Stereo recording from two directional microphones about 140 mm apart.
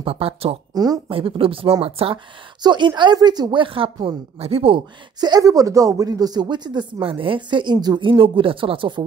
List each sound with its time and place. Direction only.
0.0 s speech: 40° right (ahead or behind)
0.7 s speech: 25° right (ahead or behind)
1.1 s a woman's voice: 40° right (ahead or behind)
2.6 s a woman's voice: 30° right (ahead or behind)